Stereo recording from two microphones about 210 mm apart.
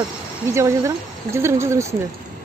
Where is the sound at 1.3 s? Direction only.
10° right (ahead or behind).